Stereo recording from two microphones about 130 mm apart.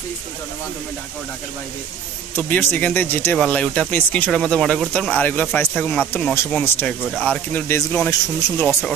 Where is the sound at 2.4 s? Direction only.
15° left (ahead or behind).